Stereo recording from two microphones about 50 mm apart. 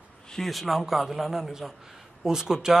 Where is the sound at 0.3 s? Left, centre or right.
Centre.